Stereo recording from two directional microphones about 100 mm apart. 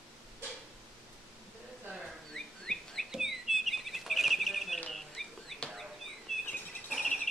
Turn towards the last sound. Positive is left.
turn(degrees=5)  # may be behind; listen again after turning